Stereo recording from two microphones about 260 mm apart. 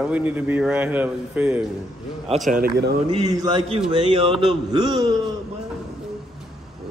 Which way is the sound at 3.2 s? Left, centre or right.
Centre.